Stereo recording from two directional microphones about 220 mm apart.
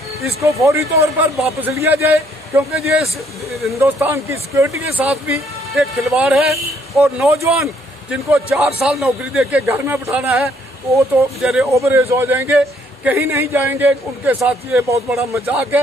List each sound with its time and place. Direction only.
0.4 s a man's voice: 15° right (ahead or behind)
1.3 s speech: centre (ahead or behind)
1.7 s a man's voice: 10° right (ahead or behind)